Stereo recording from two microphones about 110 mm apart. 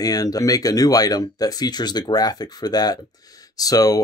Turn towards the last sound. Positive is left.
turn(degrees=35)  # may be behind; listen again after turning